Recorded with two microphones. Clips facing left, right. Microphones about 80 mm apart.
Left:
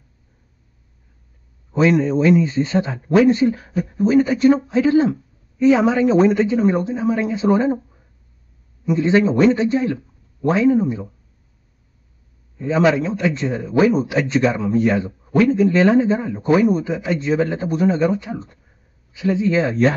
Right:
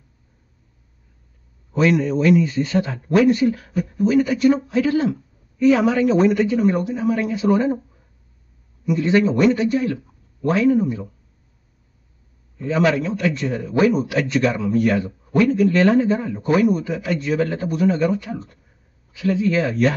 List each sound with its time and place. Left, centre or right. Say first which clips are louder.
1.7 s speech: left 2 dB; left
12.5 s speech: left 2 dB; left